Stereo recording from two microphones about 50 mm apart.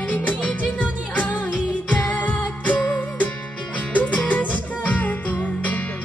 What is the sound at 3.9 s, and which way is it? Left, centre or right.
Music, left.